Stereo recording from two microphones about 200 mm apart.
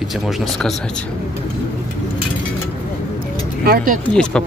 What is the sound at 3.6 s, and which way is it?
Speech, 50° right (ahead or behind).